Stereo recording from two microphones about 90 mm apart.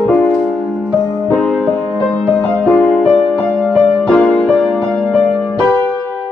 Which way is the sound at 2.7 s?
15° left (ahead or behind).